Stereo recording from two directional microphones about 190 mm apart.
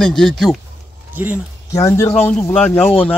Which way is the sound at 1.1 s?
10° right (ahead or behind).